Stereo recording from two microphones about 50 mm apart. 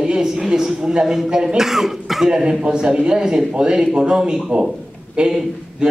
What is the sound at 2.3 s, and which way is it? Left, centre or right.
A man's voice, centre.